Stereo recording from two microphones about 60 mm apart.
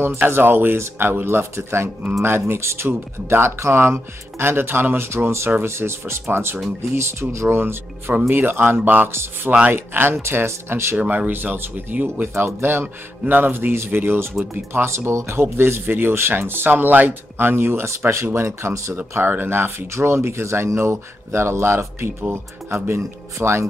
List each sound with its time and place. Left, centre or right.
0.3 s speech: right
9.1 s speech: right
11.0 s speech: right
12.4 s speech: right
12.8 s speech: right
18.9 s speech: right